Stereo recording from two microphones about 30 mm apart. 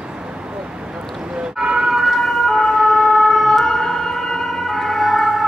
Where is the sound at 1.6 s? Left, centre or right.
Centre.